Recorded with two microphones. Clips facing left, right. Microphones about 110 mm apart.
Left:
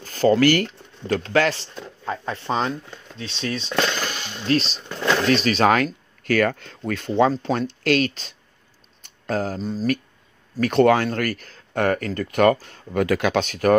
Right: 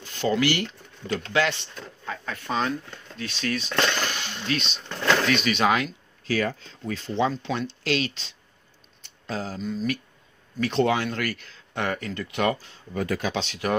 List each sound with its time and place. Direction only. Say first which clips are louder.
0.0 s speech: left 7 dB; 45° left (ahead or behind)
2.0 s speech: left 6 dB; 30° left (ahead or behind)
3.7 s a sound: left 3 dB; 15° left (ahead or behind)
4.5 s speech: left 8 dB; 35° left (ahead or behind)
4.7 s speech: left 1 dB; 5° left (ahead or behind)
5.2 s speech: left 4 dB; 35° left (ahead or behind)
9.0 s a sound: left 7 dB; 50° left (ahead or behind)
9.6 s speech: left 3 dB; 35° left (ahead or behind)
10.6 s speech: left 6 dB; 55° left (ahead or behind)
11.1 s speech: left 5 dB; 45° left (ahead or behind)
12.9 s speech: left 7 dB; 85° left
13.4 s speech: left 8 dB; 50° left (ahead or behind)